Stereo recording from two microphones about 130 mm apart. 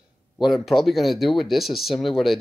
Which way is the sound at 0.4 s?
Centre (ahead or behind).